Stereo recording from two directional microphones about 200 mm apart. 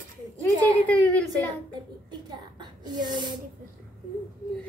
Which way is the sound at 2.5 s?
20° right (ahead or behind).